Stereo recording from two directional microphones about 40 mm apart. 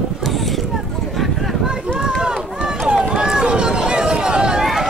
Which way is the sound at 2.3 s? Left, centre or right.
Centre.